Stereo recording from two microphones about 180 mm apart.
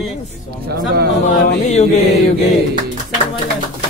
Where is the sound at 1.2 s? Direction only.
40° left (ahead or behind).